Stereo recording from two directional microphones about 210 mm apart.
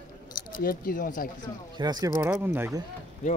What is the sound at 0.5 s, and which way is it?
Speech, 45° left (ahead or behind).